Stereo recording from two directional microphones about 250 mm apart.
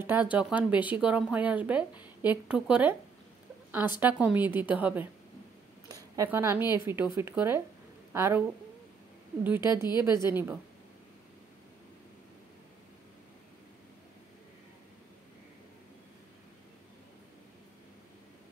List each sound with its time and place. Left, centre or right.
0.0 s speech: centre
4.0 s a woman's voice: centre
5.9 s a sound: centre
6.8 s a woman's voice: centre
9.4 s a woman's voice: centre